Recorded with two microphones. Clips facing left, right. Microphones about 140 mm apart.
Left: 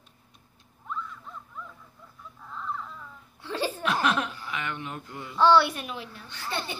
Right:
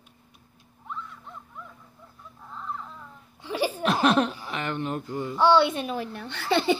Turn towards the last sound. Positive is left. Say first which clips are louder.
# right 11 dB
turn(degrees=-90)